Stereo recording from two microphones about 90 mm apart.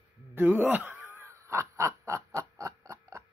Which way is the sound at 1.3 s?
30° right (ahead or behind).